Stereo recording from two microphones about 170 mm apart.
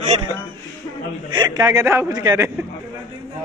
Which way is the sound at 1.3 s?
25° right (ahead or behind).